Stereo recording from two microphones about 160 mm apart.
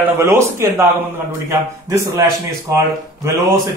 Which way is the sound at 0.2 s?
20° right (ahead or behind).